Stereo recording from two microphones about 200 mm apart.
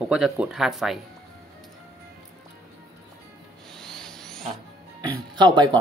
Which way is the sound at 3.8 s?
Centre (ahead or behind).